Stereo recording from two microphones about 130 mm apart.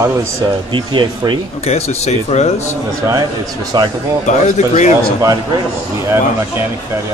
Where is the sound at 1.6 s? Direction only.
55° left (ahead or behind).